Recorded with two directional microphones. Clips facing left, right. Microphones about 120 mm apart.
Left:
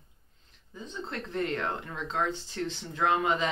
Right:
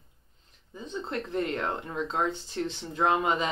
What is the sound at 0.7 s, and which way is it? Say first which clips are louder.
Speech: right 4 dB; 20° right (ahead or behind).